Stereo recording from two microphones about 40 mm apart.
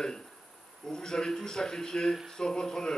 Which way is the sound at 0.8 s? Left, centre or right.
Centre.